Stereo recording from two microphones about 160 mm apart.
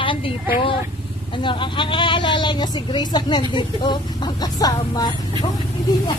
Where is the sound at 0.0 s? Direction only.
30° left (ahead or behind).